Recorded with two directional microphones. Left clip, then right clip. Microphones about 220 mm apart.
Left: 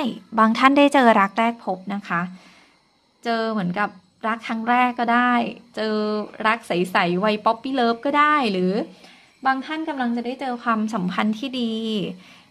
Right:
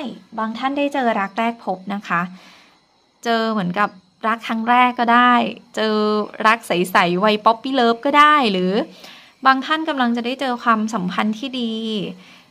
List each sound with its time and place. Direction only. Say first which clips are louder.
0.0 s a woman's voice: left 7 dB; 25° left (ahead or behind)
1.3 s a woman's voice: even; 5° left (ahead or behind)